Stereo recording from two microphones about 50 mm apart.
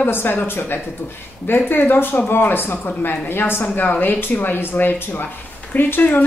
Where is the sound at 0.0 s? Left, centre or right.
Left.